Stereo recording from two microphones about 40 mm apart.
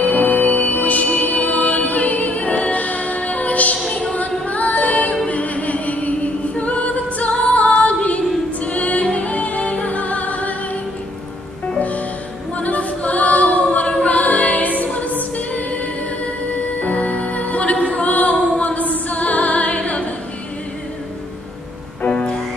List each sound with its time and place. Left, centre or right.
0.0 s music: left
12.5 s a capella: left
15.3 s music: left
22.1 s music: centre